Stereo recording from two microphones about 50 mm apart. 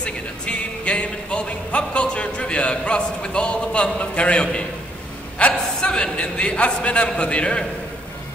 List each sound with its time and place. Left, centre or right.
0.0 s speech: left
5.4 s a sound: left
5.8 s a man's voice: centre